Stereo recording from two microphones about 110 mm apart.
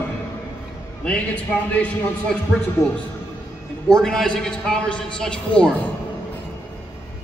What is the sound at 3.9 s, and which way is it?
A man's voice, 5° left (ahead or behind).